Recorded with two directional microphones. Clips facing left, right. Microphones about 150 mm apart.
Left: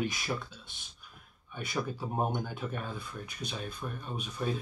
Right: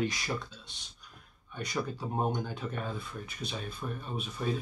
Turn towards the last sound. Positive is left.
turn(degrees=0)  # may be behind; listen again after turning